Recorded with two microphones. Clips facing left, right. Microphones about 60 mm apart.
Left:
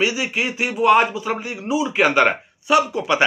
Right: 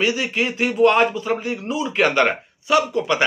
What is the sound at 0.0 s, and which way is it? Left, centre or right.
Speech, centre.